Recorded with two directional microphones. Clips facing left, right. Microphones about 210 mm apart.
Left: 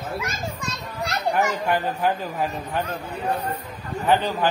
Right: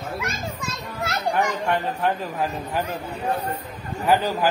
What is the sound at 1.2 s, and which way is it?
Speech, 5° left (ahead or behind).